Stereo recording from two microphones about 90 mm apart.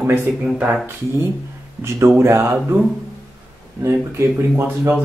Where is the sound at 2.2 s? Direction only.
30° right (ahead or behind).